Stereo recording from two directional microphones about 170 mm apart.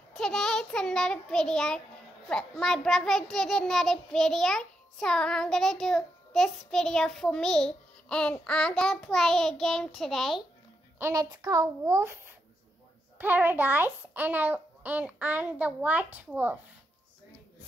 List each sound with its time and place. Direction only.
0.1 s child singing: 5° left (ahead or behind)
11.0 s a child's voice: 20° right (ahead or behind)